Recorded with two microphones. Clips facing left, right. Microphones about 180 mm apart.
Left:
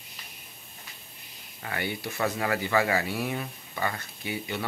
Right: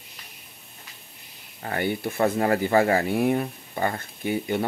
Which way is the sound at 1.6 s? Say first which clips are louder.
Right 6 dB; 45° right (ahead or behind).